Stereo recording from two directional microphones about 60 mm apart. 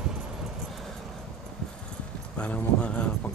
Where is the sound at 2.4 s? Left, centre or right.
Left.